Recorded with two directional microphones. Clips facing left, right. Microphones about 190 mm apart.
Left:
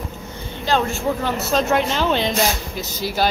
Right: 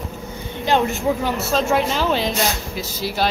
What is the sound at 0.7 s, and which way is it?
Speech, 20° right (ahead or behind).